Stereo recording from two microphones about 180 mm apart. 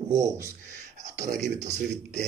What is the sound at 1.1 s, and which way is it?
Speech, 40° right (ahead or behind).